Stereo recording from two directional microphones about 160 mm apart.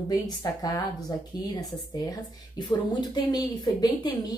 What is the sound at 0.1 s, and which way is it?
Speech, 25° left (ahead or behind).